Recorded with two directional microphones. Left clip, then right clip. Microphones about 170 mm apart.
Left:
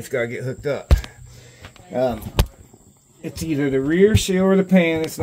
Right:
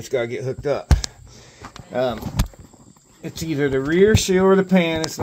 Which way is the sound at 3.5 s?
30° right (ahead or behind).